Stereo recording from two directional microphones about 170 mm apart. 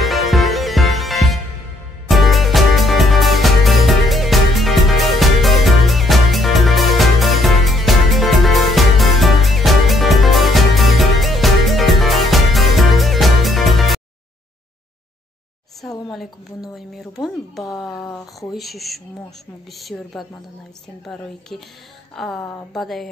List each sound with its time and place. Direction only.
0.0 s music: centre (ahead or behind)
16.1 s speech: centre (ahead or behind)
17.9 s speech: 20° left (ahead or behind)
18.5 s speech: centre (ahead or behind)